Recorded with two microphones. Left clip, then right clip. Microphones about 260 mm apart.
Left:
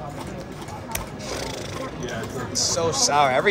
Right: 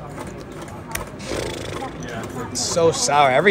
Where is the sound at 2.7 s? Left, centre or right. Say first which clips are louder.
Right 5 dB; right.